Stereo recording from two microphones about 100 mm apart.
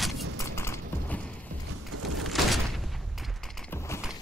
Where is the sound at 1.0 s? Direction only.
15° left (ahead or behind).